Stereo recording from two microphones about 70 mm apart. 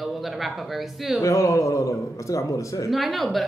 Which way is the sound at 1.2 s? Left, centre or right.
Left.